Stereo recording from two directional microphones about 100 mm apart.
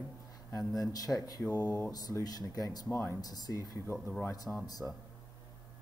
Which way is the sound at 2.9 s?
25° left (ahead or behind).